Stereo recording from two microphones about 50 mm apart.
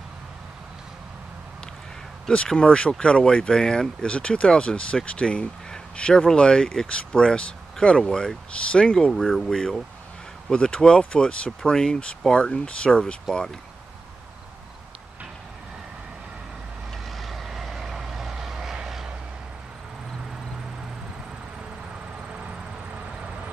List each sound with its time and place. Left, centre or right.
2.3 s speech: centre
17.2 s vehicle: centre